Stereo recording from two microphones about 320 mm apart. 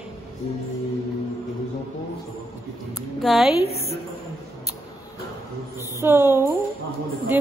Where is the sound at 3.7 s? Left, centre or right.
Centre.